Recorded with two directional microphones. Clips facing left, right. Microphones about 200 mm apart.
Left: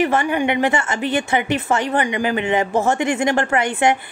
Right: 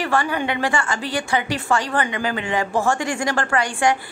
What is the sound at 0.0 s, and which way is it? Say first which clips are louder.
A woman's voice: left 4 dB; 20° left (ahead or behind).